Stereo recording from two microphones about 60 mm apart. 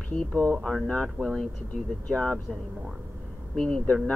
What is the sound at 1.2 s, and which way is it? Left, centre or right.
Speech, right.